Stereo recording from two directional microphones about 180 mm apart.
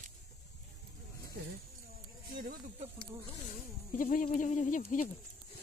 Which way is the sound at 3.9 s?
50° left (ahead or behind).